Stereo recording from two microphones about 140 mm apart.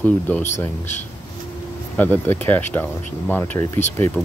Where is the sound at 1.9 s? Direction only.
15° left (ahead or behind).